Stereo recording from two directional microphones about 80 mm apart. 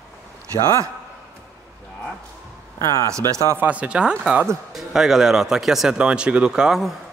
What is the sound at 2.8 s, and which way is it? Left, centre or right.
Speech, left.